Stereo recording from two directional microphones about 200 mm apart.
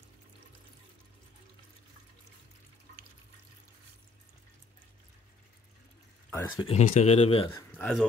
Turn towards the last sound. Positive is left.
turn(degrees=5)  # may be behind; listen again after turning